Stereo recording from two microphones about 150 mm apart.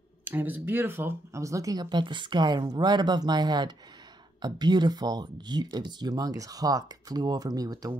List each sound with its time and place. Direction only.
0.2 s speech: 15° right (ahead or behind)